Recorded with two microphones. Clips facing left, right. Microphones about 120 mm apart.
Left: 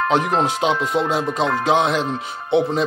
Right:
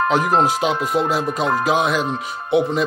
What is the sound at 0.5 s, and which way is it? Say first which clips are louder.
Speech: even; 25° left (ahead or behind).